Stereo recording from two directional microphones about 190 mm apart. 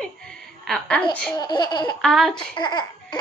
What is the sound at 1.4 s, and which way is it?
Laughter, 20° left (ahead or behind).